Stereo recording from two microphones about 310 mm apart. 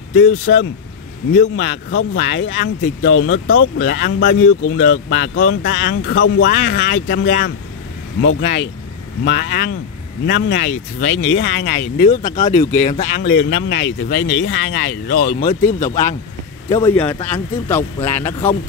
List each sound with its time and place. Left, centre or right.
0.1 s speech: left
13.3 s speech: left; by 17.8 s centre